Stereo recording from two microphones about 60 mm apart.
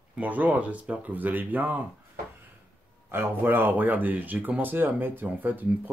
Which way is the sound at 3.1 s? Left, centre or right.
Right.